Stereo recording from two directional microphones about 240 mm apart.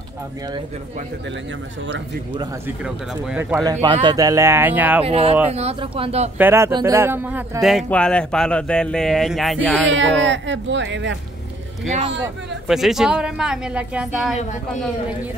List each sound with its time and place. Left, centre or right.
2.8 s speech: centre
3.7 s speech: right
5.0 s speech: right
6.3 s speech: centre
10.2 s speech: right
12.6 s speech: centre